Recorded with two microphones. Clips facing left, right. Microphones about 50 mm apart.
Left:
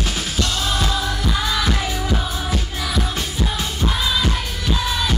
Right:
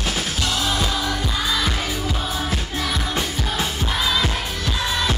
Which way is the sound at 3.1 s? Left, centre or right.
Centre.